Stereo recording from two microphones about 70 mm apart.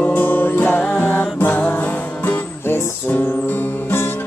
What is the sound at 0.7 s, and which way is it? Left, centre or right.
Music, centre.